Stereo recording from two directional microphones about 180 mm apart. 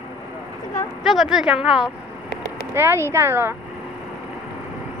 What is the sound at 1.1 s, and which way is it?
Speech, centre (ahead or behind).